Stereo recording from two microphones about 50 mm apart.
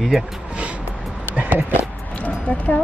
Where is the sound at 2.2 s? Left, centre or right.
Left.